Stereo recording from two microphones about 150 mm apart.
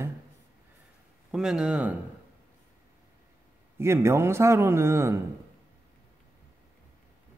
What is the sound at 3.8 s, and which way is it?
A man's voice, 15° right (ahead or behind).